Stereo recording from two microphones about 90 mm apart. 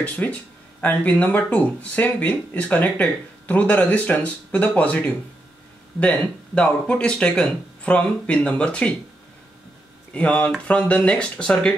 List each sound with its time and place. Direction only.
0.0 s speech: 15° left (ahead or behind)
10.1 s speech: 15° left (ahead or behind)